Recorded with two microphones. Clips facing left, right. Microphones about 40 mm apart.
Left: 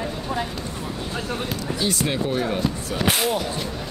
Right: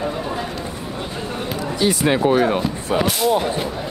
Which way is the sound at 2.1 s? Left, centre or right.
Right.